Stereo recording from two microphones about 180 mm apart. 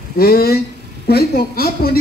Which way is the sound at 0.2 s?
60° left (ahead or behind).